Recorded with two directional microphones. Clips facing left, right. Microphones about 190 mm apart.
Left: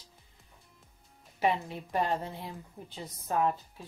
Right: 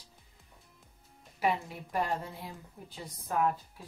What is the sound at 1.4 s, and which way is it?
A woman's voice, 25° left (ahead or behind).